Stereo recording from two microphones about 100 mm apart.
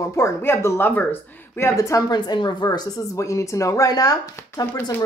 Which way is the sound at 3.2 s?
30° left (ahead or behind).